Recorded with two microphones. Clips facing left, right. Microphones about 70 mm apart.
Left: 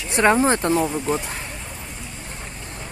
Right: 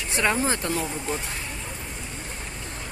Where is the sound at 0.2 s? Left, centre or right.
Left.